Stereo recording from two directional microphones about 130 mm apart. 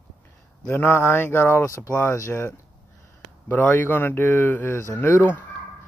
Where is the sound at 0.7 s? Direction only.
15° left (ahead or behind).